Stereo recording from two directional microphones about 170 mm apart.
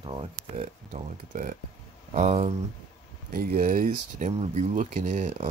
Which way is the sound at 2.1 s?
40° right (ahead or behind).